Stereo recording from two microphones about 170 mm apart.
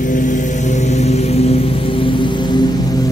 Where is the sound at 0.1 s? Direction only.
50° left (ahead or behind).